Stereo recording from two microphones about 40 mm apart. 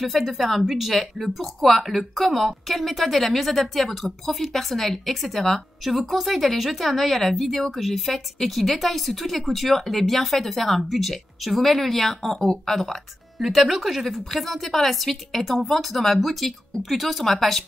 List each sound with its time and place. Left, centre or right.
0.0 s speech: centre
13.4 s speech: centre